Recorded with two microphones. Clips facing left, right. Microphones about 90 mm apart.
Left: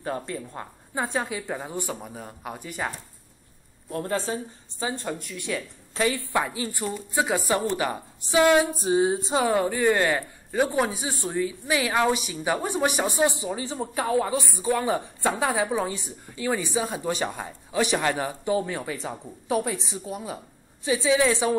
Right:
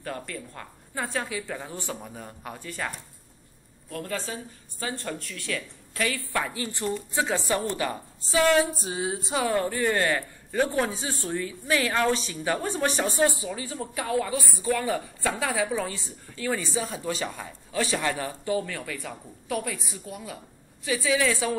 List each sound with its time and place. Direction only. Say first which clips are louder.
0.0 s a woman's voice: left 4 dB; 20° left (ahead or behind)
3.9 s a woman's voice: left 5 dB; 30° left (ahead or behind)
4.8 s a woman's voice: left 3 dB; 20° left (ahead or behind)